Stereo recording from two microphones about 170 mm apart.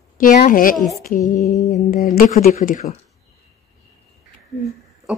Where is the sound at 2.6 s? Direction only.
45° left (ahead or behind).